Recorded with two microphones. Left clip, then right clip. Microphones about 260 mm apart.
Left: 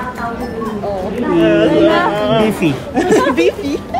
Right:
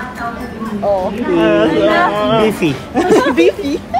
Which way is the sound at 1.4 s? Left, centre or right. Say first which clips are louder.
Even; centre.